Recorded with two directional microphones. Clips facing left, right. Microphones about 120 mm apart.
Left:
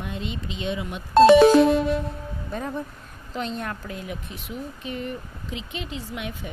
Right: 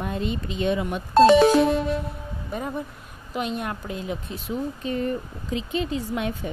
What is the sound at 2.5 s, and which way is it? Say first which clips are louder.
Speech: right 1 dB; 10° right (ahead or behind).